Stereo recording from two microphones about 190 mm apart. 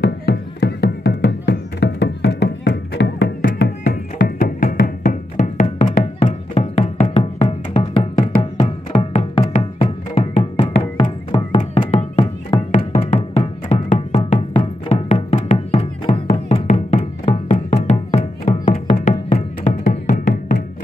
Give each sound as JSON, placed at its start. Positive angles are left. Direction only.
{"t": 0.0, "sound": "music", "side_deg": 60}
{"t": 5.6, "sound": "music", "side_deg": 40}